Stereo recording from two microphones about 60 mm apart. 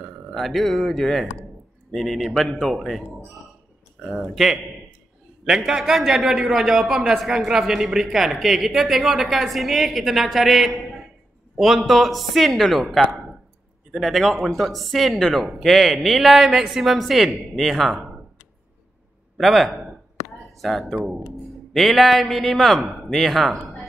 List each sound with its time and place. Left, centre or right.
0.3 s a man's voice: centre
4.2 s a man's voice: centre
19.3 s a man's voice: centre
20.2 s a sound: left
20.6 s a man's voice: centre